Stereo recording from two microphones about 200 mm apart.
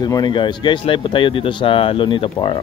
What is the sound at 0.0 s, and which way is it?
Speech, 20° left (ahead or behind).